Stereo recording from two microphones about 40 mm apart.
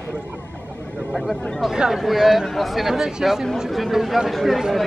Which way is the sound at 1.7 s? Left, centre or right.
Centre.